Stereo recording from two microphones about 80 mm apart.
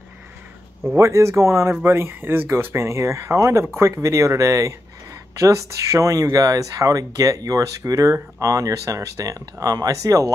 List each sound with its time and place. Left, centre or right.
0.8 s speech: right